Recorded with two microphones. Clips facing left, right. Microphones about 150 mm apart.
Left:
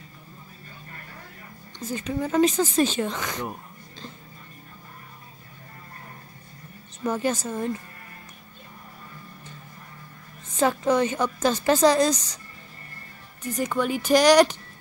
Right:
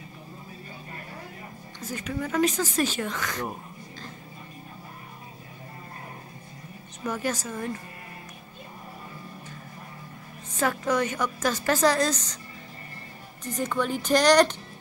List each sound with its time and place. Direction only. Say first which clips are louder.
1.9 s a woman's voice: left 4 dB; 25° left (ahead or behind)
7.1 s a woman's voice: left 4 dB; 25° left (ahead or behind)
10.6 s a woman's voice: left 4 dB; 25° left (ahead or behind)
13.6 s speech: left 2 dB; 10° left (ahead or behind)